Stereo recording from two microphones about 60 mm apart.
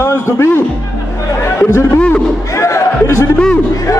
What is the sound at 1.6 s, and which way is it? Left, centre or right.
A man's voice, left.